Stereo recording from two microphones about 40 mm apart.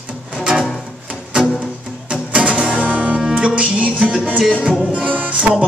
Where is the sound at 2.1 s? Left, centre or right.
Right.